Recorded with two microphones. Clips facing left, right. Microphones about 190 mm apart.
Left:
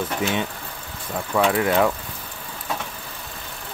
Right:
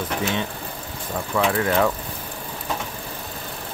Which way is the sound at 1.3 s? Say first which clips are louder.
Left 2 dB; 10° left (ahead or behind).